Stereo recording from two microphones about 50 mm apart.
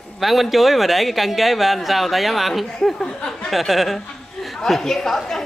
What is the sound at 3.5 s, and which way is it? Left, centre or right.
A woman's voice, centre.